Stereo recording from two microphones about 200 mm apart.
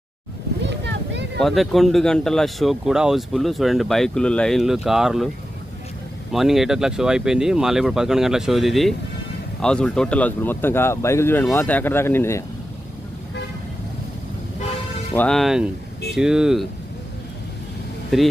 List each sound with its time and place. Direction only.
0.7 s boat: 60° right (ahead or behind)
1.4 s speech: centre (ahead or behind)
6.3 s speech: centre (ahead or behind)
15.1 s speech: 5° left (ahead or behind)
18.1 s speech: centre (ahead or behind)